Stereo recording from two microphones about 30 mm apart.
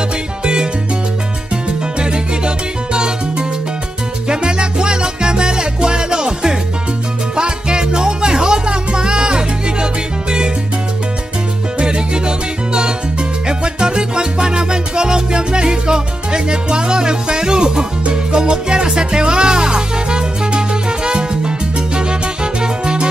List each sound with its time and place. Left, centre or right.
2.0 s music: right
11.8 s music: right